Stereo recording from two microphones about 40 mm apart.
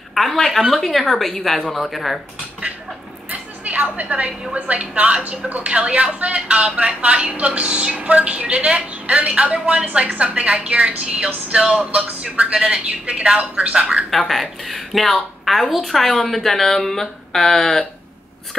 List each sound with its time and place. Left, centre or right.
0.1 s a sound: centre
0.5 s a woman's voice: centre
3.3 s a sound: right
4.6 s speech: right
11.5 s speech: right
14.1 s a woman's voice: centre